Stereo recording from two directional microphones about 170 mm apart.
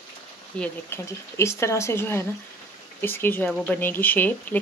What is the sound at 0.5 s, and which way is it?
Speech, 10° left (ahead or behind).